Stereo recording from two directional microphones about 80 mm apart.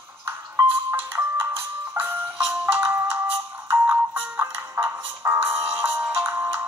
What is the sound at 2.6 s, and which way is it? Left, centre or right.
Ringtone, right.